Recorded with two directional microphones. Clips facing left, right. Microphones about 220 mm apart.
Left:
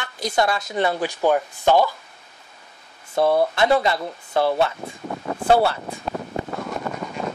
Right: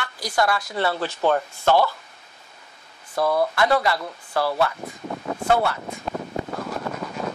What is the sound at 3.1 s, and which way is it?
Speech, 25° left (ahead or behind).